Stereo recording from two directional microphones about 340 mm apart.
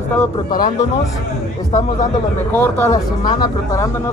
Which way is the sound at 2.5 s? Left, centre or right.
Centre.